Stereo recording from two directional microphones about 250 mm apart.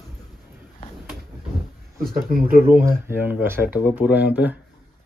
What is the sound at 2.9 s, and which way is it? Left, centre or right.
Speech, centre.